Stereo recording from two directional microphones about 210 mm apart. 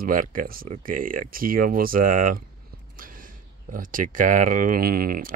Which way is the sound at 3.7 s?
40° right (ahead or behind).